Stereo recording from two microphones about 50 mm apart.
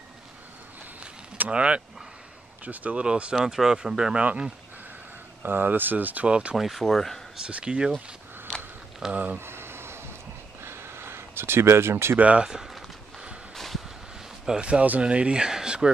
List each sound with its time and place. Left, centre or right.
1.4 s speech: right
3.3 s speech: centre
5.4 s speech: right
6.2 s speech: right
6.5 s speech: centre
7.6 s speech: centre
9.1 s speech: right
9.4 s a sound: right
12.2 s speech: right
12.4 s speech: centre
14.4 s speech: centre
14.7 s speech: right